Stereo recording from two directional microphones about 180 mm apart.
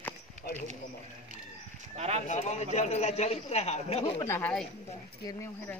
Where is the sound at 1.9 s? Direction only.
35° right (ahead or behind).